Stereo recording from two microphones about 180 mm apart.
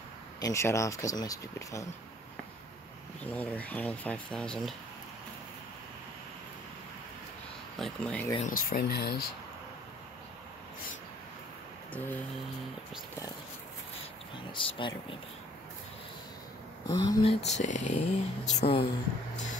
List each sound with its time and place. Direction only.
0.4 s speech: 15° left (ahead or behind)
3.3 s speech: 10° left (ahead or behind)
7.8 s speech: 5° left (ahead or behind)
8.4 s speech: 50° left (ahead or behind)
14.3 s speech: 25° left (ahead or behind)
16.8 s speech: 20° left (ahead or behind)
17.2 s speech: 35° left (ahead or behind)